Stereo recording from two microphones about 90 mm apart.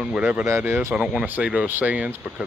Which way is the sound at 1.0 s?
15° right (ahead or behind).